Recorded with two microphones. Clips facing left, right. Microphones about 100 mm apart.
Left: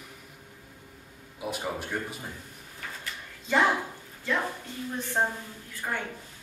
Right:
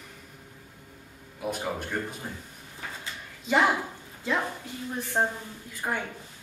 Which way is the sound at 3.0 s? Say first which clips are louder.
Even; 15° right (ahead or behind).